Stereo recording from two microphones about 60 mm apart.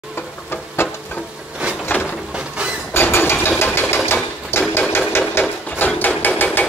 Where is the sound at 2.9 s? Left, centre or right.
Left.